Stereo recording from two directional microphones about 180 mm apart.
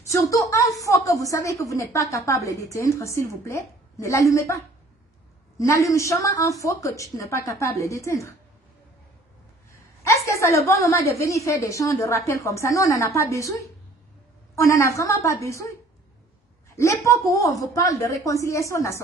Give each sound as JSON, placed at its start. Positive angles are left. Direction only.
{"t": 0.3, "sound": "a woman's voice", "side_deg": 20}
{"t": 5.6, "sound": "a woman's voice", "side_deg": 20}
{"t": 10.0, "sound": "a woman's voice", "side_deg": 15}
{"t": 16.7, "sound": "a woman's voice", "side_deg": 15}